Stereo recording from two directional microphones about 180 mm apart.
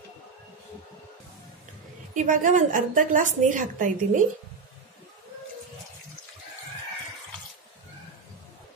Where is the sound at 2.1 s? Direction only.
45° right (ahead or behind).